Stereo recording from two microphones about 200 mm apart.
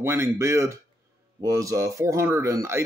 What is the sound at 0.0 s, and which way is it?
Speech, 10° right (ahead or behind).